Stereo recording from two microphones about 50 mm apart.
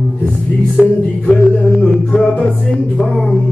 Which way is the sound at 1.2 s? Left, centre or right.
Centre.